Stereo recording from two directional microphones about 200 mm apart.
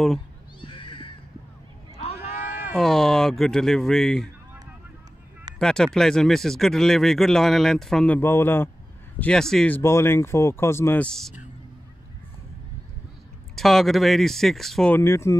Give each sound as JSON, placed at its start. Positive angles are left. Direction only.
{"t": 0.6, "sound": "cat", "side_deg": 25}
{"t": 2.0, "sound": "a sound", "side_deg": 35}
{"t": 2.3, "sound": "cat", "side_deg": -10}
{"t": 2.7, "sound": "speech", "side_deg": 0}
{"t": 5.6, "sound": "speech", "side_deg": 5}
{"t": 13.6, "sound": "speech", "side_deg": 0}